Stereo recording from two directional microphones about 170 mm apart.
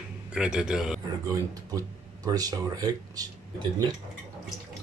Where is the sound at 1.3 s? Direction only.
20° right (ahead or behind).